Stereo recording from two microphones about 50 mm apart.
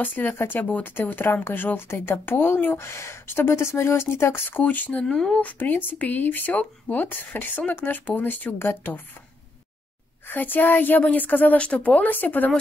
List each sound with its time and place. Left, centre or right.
0.0 s speech: left
0.7 s speech: left
0.9 s speech: left
2.8 s speech: left
4.5 s speech: left
5.0 s speech: centre
5.4 s speech: left
10.2 s speech: left
11.5 s speech: left